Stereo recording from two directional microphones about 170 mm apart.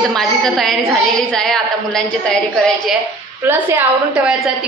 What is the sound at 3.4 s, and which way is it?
Speech, 10° right (ahead or behind).